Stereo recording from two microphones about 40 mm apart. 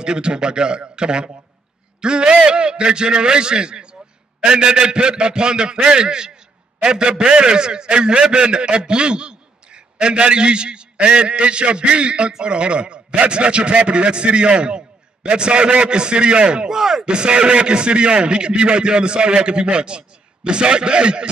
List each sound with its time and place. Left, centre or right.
0.0 s a man's voice: right
16.7 s speech: centre
17.0 s a man's voice: right